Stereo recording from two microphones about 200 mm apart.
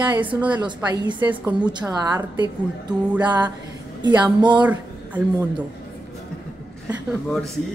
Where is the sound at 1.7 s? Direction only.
20° right (ahead or behind).